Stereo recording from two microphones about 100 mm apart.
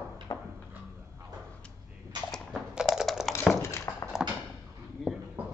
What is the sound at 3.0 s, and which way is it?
Typing, centre (ahead or behind).